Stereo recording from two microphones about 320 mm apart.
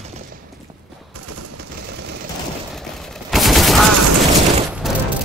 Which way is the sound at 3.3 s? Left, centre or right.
Centre.